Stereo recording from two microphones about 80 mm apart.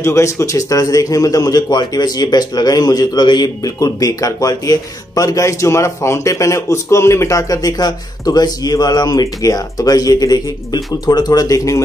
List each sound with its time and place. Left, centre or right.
0.0 s a man's voice: left